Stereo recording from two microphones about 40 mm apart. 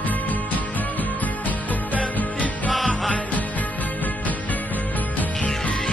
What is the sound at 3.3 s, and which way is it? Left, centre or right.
Music, left.